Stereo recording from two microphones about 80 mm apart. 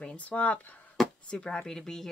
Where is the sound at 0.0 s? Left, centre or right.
Centre.